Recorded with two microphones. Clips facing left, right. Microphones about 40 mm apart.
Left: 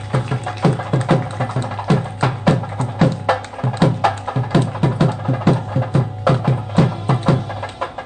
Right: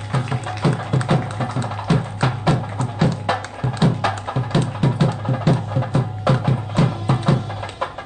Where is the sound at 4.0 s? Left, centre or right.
Left.